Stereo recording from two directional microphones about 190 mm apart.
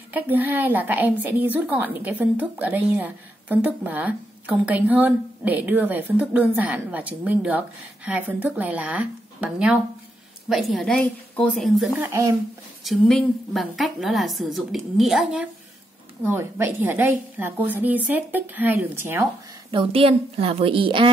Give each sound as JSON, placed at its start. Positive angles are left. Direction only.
{"t": 0.1, "sound": "a woman's voice", "side_deg": -10}
{"t": 12.0, "sound": "a woman's voice", "side_deg": -15}
{"t": 12.8, "sound": "a woman's voice", "side_deg": 0}
{"t": 19.7, "sound": "a woman's voice", "side_deg": -30}